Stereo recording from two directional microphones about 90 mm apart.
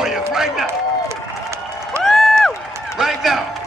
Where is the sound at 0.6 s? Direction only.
30° right (ahead or behind).